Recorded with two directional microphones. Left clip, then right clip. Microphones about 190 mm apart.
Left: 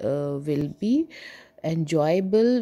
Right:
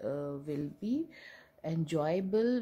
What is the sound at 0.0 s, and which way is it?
Speech, 35° left (ahead or behind).